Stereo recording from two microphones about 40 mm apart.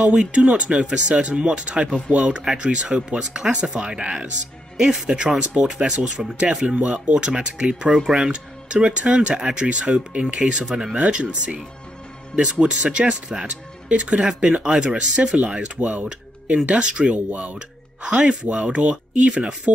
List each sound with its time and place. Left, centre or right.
0.0 s speech: right
7.9 s speech: centre
8.2 s speech: right
17.6 s a woman's voice: right